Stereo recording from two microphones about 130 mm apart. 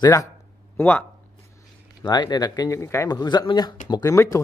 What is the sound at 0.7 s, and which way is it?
Speech, 15° left (ahead or behind).